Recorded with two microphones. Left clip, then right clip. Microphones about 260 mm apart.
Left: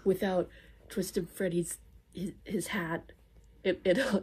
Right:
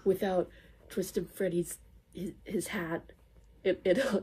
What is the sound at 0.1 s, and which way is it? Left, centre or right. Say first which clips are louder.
Speech: even; left.